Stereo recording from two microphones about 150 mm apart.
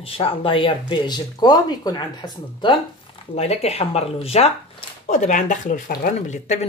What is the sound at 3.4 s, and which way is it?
Speech, 45° left (ahead or behind).